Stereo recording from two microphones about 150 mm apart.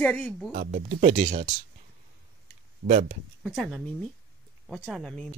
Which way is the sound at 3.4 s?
Centre (ahead or behind).